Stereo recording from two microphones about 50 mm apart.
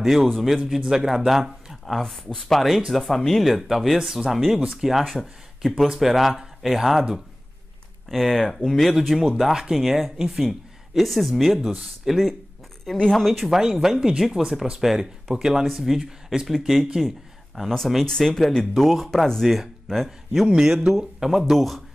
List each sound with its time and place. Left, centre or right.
0.0 s speech: centre
0.7 s speech: centre
2.0 s speech: centre
8.1 s speech: centre
12.9 s speech: centre
13.2 s speech: centre
13.6 s speech: centre
20.4 s speech: centre